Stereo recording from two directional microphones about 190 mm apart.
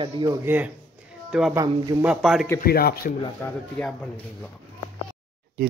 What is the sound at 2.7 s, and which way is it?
Speech, 55° left (ahead or behind).